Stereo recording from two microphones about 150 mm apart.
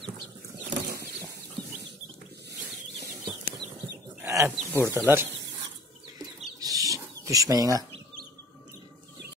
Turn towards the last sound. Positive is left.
turn(degrees=-25)  # may be behind; listen again after turning